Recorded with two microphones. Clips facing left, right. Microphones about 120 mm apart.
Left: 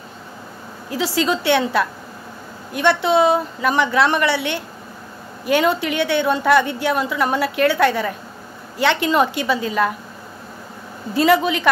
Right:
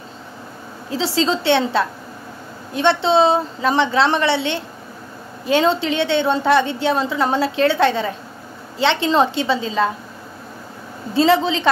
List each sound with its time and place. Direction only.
0.8 s a woman's voice: 25° right (ahead or behind)
11.1 s a woman's voice: 25° right (ahead or behind)